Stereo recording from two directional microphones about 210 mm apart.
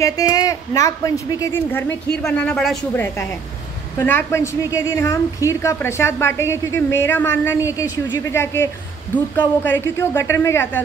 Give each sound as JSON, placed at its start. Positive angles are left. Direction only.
{"t": 0.0, "sound": "a woman's voice", "side_deg": 15}